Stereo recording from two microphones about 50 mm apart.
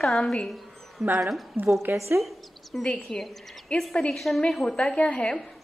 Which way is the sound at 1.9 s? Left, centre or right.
Right.